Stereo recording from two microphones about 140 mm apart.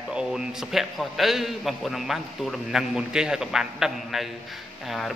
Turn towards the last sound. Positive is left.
turn(degrees=0)  # may be behind; listen again after turning